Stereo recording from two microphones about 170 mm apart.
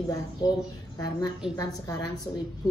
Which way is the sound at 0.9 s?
20° left (ahead or behind).